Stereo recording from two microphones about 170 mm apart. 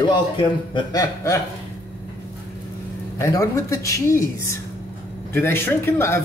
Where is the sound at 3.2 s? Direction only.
20° left (ahead or behind).